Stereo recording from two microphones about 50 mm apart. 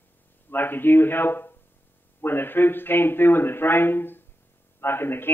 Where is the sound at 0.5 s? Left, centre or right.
Left.